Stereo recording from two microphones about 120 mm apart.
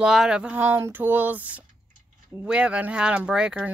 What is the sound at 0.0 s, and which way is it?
Speech, 5° right (ahead or behind).